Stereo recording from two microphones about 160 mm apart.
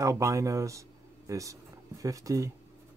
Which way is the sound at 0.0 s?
20° right (ahead or behind).